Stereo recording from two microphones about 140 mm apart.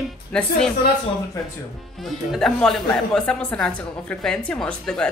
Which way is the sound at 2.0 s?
Centre (ahead or behind).